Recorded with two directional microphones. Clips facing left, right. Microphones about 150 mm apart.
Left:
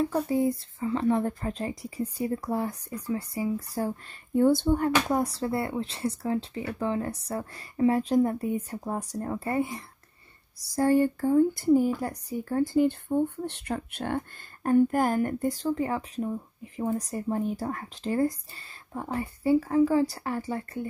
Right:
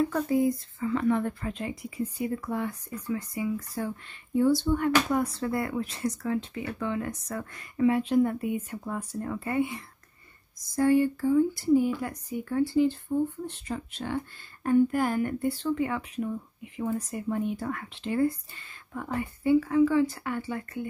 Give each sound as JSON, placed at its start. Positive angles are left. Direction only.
{"t": 0.3, "sound": "speech", "side_deg": 30}
{"t": 4.4, "sound": "speech", "side_deg": 50}
{"t": 4.7, "sound": "speech", "side_deg": 35}